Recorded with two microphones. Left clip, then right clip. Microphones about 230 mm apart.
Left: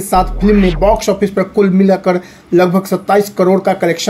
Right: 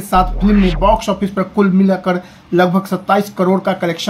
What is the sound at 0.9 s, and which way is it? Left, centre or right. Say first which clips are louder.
Speech: left 3 dB; right.